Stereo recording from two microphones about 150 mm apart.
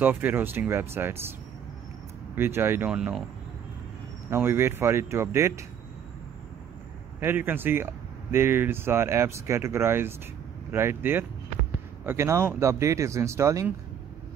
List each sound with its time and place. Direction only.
0.0 s speech: 15° right (ahead or behind)
2.3 s speech: 15° right (ahead or behind)
4.3 s speech: 15° right (ahead or behind)
7.2 s speech: 15° right (ahead or behind)